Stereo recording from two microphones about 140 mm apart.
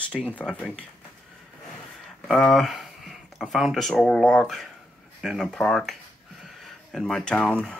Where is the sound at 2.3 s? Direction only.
Centre (ahead or behind).